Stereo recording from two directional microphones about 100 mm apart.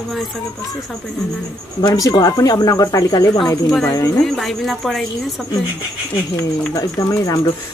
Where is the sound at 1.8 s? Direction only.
40° left (ahead or behind).